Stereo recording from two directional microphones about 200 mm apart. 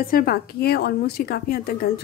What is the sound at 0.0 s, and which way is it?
Speech, 45° left (ahead or behind).